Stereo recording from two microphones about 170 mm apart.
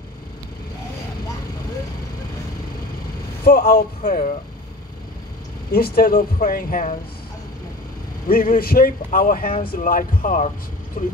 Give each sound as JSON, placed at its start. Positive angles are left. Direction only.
{"t": 3.4, "sound": "speech", "side_deg": 60}
{"t": 5.7, "sound": "speech", "side_deg": 60}
{"t": 8.3, "sound": "speech", "side_deg": 55}